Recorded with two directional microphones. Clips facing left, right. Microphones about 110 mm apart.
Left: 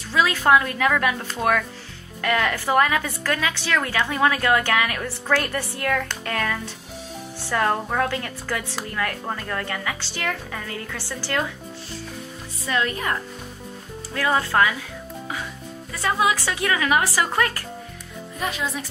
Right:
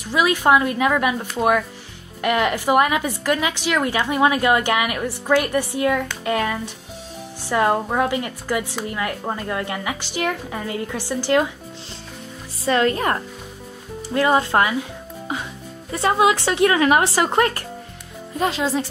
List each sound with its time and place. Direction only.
0.1 s a woman's voice: 15° right (ahead or behind)
12.6 s speech: 35° right (ahead or behind)
14.1 s speech: 20° right (ahead or behind)
15.9 s speech: 25° right (ahead or behind)